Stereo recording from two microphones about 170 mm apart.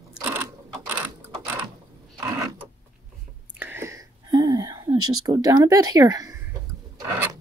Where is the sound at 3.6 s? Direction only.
15° right (ahead or behind).